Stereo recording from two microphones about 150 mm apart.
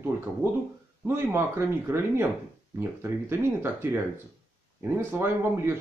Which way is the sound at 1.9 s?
15° right (ahead or behind).